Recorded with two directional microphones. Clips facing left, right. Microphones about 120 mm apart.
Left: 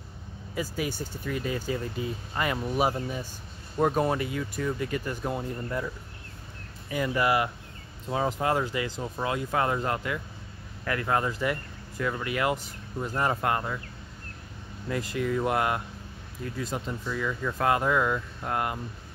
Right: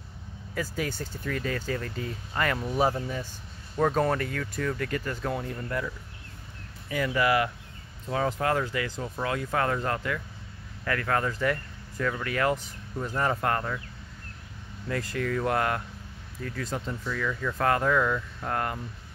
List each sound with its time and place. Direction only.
0.6 s speech: 15° left (ahead or behind)
7.0 s speech: 20° left (ahead or behind)
14.9 s speech: 15° left (ahead or behind)